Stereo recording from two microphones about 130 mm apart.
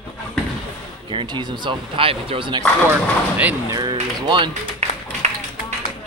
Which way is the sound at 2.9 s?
10° right (ahead or behind).